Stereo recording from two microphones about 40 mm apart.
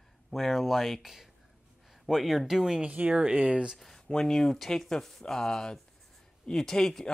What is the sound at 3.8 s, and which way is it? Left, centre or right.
Speech, centre.